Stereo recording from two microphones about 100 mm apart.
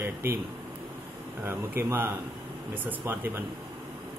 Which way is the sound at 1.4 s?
25° right (ahead or behind).